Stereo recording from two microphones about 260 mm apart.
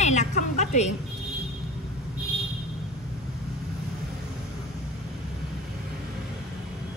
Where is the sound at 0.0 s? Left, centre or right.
Left.